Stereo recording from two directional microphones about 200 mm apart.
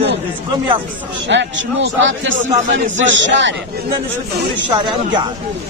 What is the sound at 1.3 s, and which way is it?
A man's voice, 65° right (ahead or behind).